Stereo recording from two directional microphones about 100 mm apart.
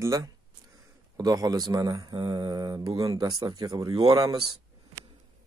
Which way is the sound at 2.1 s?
50° right (ahead or behind).